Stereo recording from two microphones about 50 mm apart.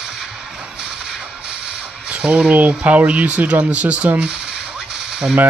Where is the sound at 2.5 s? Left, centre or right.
Right.